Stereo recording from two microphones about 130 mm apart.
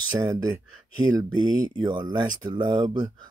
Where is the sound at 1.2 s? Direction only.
35° right (ahead or behind).